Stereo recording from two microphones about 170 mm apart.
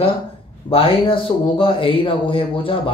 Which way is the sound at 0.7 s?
30° left (ahead or behind).